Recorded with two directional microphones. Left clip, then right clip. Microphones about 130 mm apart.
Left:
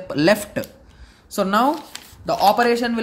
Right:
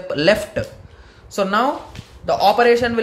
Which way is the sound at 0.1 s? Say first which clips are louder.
Right 2 dB; 40° left (ahead or behind).